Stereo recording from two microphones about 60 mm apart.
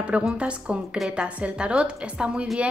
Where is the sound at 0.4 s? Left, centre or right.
Centre.